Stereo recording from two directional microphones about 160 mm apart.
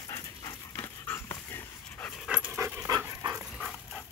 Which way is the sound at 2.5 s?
20° right (ahead or behind).